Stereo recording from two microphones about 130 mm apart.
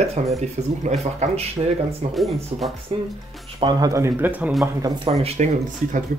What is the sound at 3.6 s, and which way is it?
Speech, 25° right (ahead or behind).